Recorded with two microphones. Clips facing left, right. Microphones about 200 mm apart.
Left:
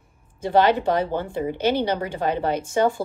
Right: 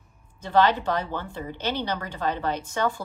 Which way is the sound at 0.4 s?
15° left (ahead or behind).